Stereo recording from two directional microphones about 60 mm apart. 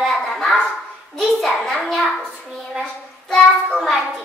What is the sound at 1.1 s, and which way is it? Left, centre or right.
Hands, centre.